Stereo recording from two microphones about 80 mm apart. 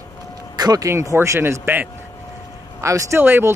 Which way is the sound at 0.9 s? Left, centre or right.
Right.